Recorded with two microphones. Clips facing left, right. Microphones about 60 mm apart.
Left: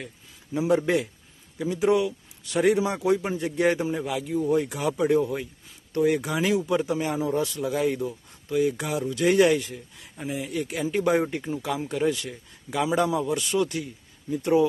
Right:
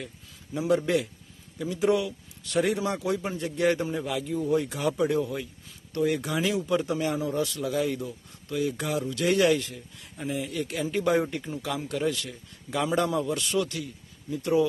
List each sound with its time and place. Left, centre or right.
0.0 s a man's voice: left
4.5 s a man's voice: left
12.7 s a man's voice: centre